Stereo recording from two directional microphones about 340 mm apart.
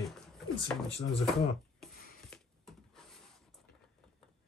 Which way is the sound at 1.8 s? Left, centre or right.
Centre.